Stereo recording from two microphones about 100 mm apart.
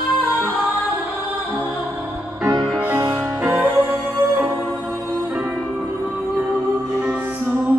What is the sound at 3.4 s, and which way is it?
Music, 20° right (ahead or behind).